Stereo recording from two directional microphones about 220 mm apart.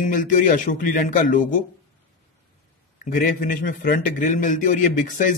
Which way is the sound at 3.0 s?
35° left (ahead or behind).